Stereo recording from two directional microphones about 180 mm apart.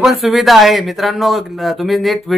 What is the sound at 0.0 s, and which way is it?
Speech, centre (ahead or behind).